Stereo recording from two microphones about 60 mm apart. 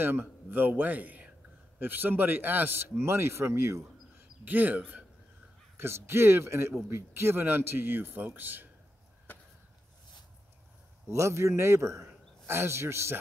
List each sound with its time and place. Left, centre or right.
0.0 s a man's voice: right
4.5 s speech: right
5.8 s a man's voice: right
11.1 s a man's voice: right